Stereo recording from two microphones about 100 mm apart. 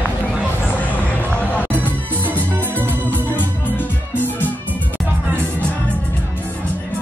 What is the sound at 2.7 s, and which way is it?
Organ, 20° right (ahead or behind).